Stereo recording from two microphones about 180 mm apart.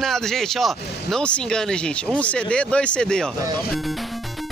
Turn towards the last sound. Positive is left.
turn(degrees=5)  # may be behind; listen again after turning